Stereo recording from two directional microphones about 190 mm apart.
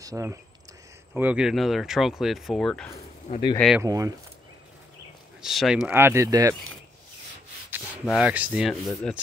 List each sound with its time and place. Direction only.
0.0 s speech: 15° right (ahead or behind); by 2.9 s centre (ahead or behind)
3.3 s speech: 35° left (ahead or behind)
3.8 s speech: 15° right (ahead or behind)
5.4 s speech: centre (ahead or behind)
7.7 s rub: 5° right (ahead or behind)